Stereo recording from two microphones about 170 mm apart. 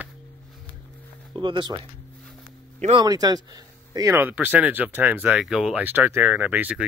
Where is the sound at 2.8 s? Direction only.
25° right (ahead or behind).